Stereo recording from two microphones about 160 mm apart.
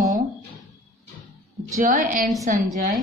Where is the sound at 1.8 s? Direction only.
55° right (ahead or behind).